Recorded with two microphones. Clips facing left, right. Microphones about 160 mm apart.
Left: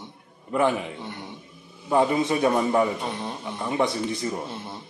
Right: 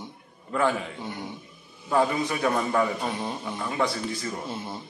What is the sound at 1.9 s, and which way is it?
Speech, 20° left (ahead or behind).